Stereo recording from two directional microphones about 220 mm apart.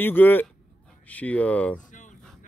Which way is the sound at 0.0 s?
10° left (ahead or behind).